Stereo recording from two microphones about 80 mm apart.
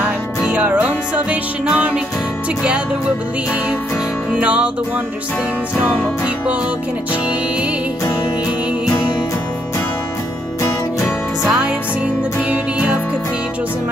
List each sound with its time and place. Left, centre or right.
0.4 s music: centre
4.4 s music: centre
6.2 s music: centre
11.1 s music: centre